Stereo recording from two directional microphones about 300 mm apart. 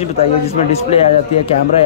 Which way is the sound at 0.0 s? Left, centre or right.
Left.